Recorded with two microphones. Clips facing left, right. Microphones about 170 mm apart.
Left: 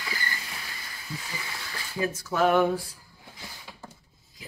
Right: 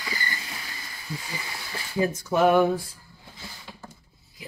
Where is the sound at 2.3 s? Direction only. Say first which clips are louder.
Right 3 dB; 10° right (ahead or behind).